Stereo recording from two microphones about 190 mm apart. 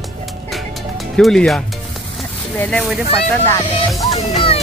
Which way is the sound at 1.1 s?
5° left (ahead or behind).